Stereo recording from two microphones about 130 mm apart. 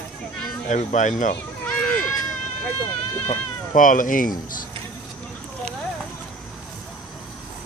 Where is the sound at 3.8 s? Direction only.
90° left.